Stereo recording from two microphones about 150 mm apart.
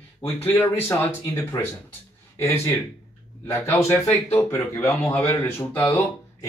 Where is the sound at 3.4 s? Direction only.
15° left (ahead or behind).